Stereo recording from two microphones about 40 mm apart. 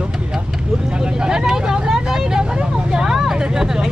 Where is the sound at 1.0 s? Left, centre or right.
Centre.